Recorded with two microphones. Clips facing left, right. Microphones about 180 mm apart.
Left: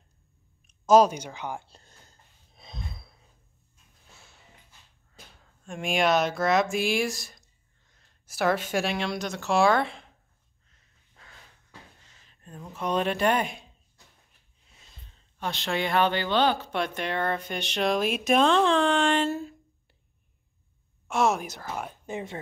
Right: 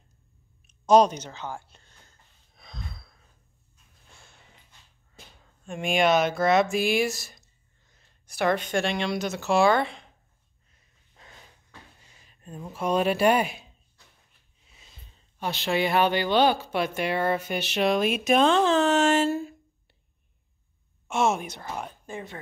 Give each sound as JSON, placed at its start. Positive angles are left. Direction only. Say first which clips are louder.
{"t": 0.8, "sound": "speech", "louder": "even", "side_deg": 5}
{"t": 1.7, "sound": "a sound", "louder": "left 3 dB", "side_deg": 40}
{"t": 2.5, "sound": "gasp", "louder": "left 1 dB", "side_deg": 20}
{"t": 4.1, "sound": "snort", "louder": "even", "side_deg": 5}
{"t": 5.4, "sound": "speech", "louder": "right 2 dB", "side_deg": 0}
{"t": 12.0, "sound": "speech", "louder": "right 2 dB", "side_deg": -10}
{"t": 15.0, "sound": "speech", "louder": "right 2 dB", "side_deg": -10}
{"t": 21.1, "sound": "speech", "louder": "even", "side_deg": 0}
{"t": 22.0, "sound": "speech", "louder": "left 3 dB", "side_deg": 20}